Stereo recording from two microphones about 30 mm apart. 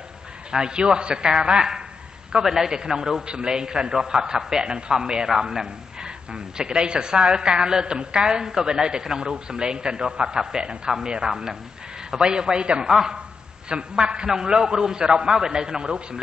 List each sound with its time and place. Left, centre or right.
0.5 s speech: right
2.4 s a man's voice: centre
2.7 s speech: right
4.6 s speech: right; by 5.7 s centre
5.9 s a man's voice: right